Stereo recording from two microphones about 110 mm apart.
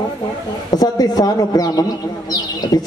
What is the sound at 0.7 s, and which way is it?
Speech, 40° left (ahead or behind).